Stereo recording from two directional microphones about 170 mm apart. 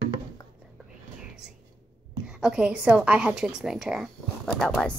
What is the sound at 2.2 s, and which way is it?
A woman's voice, 5° right (ahead or behind).